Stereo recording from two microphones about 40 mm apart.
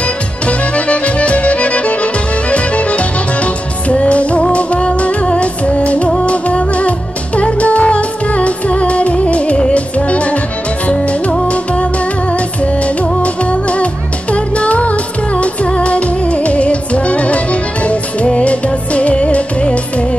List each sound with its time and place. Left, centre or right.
0.5 s music: left
12.8 s music: left